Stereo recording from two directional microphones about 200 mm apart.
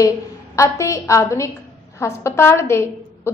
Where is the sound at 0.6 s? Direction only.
15° left (ahead or behind).